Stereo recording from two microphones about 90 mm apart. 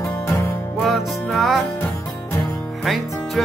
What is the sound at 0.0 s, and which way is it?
Music, 25° left (ahead or behind).